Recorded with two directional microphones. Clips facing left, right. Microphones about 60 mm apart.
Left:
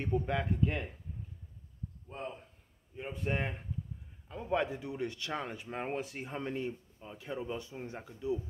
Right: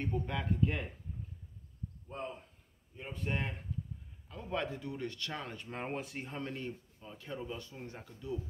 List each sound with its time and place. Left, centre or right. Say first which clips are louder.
0.0 s speech: left 4 dB; centre
3.0 s speech: left 3 dB; centre
6.3 s speech: left 5 dB; centre